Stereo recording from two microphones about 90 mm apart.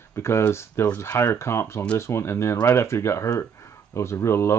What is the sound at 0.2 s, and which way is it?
Speech, 30° left (ahead or behind).